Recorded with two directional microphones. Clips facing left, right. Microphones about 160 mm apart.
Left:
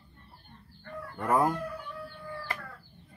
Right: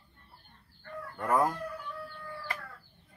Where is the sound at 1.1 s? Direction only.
25° left (ahead or behind).